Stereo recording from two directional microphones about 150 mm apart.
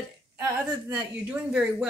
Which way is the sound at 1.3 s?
5° right (ahead or behind).